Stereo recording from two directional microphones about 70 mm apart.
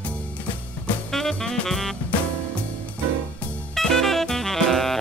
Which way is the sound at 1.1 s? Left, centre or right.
Centre.